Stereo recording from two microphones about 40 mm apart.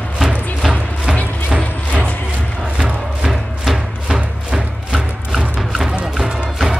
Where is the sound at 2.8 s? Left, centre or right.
Centre.